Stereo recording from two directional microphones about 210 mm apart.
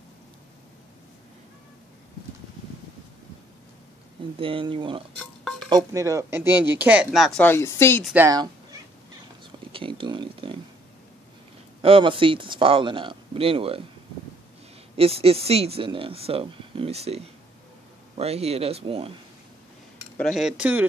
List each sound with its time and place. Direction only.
4.4 s speech: 25° right (ahead or behind)
5.2 s stir: centre (ahead or behind)
5.7 s speech: 15° right (ahead or behind); by 8.0 s 10° left (ahead or behind)
8.0 s speech: 5° right (ahead or behind)
9.4 s a sound: 25° right (ahead or behind)
11.8 s speech: 25° right (ahead or behind)
15.0 s speech: 30° right (ahead or behind)
20.2 s speech: centre (ahead or behind)